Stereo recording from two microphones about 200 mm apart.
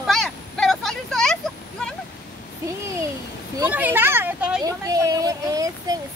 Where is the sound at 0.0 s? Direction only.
Centre (ahead or behind).